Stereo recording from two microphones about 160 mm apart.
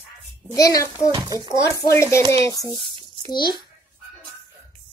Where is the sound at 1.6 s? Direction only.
20° left (ahead or behind).